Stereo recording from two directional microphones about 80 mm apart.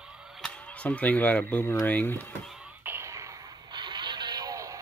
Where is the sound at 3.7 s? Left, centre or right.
Right.